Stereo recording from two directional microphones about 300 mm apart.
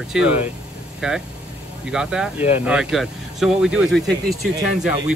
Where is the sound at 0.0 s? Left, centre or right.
Centre.